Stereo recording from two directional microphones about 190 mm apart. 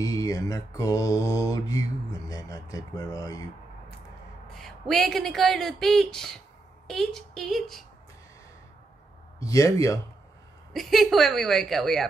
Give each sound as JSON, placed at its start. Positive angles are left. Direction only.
{"t": 0.0, "sound": "mantra", "side_deg": 20}
{"t": 4.5, "sound": "speech", "side_deg": 0}
{"t": 9.4, "sound": "mantra", "side_deg": 15}
{"t": 10.7, "sound": "speech", "side_deg": 0}